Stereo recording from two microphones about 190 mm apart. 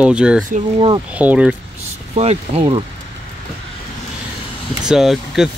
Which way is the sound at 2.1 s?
30° right (ahead or behind).